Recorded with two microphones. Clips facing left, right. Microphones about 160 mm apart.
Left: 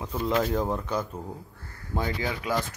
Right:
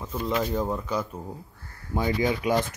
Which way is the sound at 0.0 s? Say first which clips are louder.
Left 1 dB; 5° left (ahead or behind).